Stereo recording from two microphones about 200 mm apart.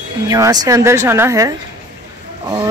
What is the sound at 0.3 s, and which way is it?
A woman's voice, 20° right (ahead or behind).